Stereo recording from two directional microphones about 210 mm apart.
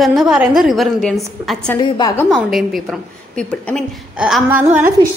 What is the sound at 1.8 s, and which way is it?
Speech, 20° left (ahead or behind).